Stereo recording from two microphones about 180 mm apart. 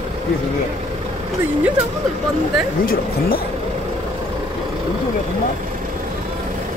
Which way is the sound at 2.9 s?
55° left (ahead or behind).